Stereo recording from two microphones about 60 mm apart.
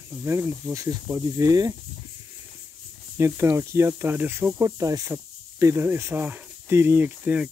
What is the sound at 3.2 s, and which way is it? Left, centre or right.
Speech, right.